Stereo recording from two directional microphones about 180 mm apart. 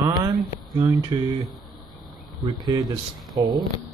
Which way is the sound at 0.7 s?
20° right (ahead or behind).